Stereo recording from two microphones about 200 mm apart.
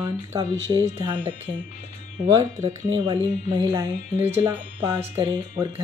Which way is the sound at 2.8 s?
25° right (ahead or behind).